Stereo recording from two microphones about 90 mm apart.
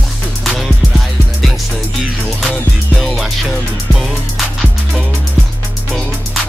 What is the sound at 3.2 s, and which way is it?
Music, centre (ahead or behind).